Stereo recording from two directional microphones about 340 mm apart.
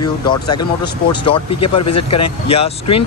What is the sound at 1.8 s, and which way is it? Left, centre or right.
Speech, left.